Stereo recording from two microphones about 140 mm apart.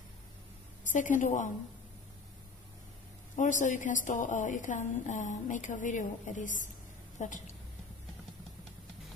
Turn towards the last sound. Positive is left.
turn(degrees=60)  # may be behind; listen again after turning